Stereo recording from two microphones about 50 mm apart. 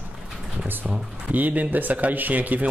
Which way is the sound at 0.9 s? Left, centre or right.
Right.